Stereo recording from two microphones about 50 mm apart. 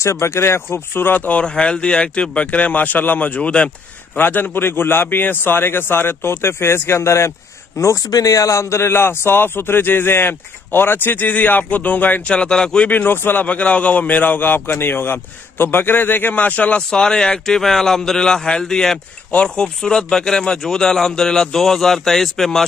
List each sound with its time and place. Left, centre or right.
0.0 s a man's voice: left
1.4 s speech: centre
4.2 s a man's voice: left
12.3 s speech: centre
12.9 s a man's voice: left
13.5 s a man's voice: left
17.0 s speech: centre